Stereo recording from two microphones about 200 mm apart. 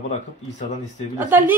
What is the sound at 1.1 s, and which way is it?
Speech, 10° right (ahead or behind).